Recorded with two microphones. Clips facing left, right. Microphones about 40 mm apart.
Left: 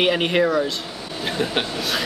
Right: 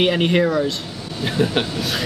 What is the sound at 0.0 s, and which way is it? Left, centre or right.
Speech, centre.